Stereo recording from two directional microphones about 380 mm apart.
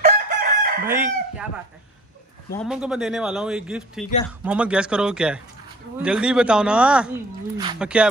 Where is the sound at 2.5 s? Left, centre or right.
Centre.